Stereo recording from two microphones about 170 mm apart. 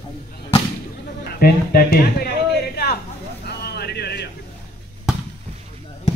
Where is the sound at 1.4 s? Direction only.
60° left (ahead or behind).